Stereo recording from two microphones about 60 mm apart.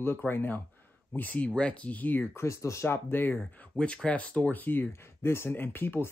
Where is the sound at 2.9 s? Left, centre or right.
Left.